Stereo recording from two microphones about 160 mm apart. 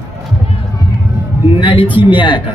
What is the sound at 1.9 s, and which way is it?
Speech, 10° right (ahead or behind).